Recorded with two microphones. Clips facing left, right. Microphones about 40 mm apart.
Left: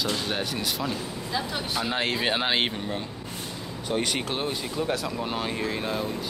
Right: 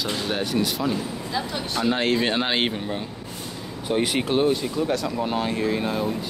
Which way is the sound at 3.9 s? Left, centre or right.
Centre.